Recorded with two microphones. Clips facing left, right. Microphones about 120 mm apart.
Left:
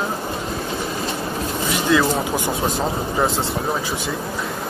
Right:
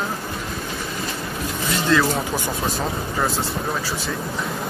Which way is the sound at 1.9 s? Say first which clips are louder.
Left 1 dB; 15° left (ahead or behind).